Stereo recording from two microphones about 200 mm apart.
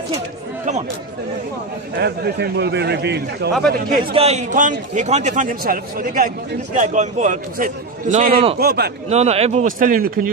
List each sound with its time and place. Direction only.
2.0 s a man's voice: 55° right (ahead or behind)
4.1 s a man's voice: 30° right (ahead or behind)
8.5 s speech: 55° right (ahead or behind)
9.1 s a man's voice: 30° right (ahead or behind)